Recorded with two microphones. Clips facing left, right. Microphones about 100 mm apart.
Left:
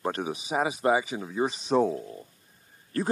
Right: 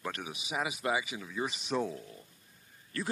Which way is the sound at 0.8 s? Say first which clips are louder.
Left 9 dB; 35° left (ahead or behind).